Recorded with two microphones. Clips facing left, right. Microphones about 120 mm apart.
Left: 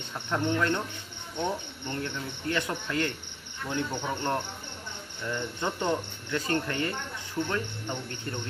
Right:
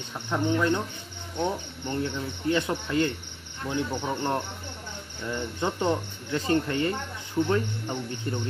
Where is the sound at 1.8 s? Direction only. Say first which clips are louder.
Right 6 dB; 25° right (ahead or behind).